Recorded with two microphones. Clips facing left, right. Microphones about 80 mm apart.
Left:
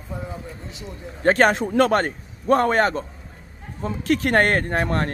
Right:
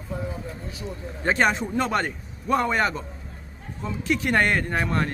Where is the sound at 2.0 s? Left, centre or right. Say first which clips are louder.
Left 4 dB; left.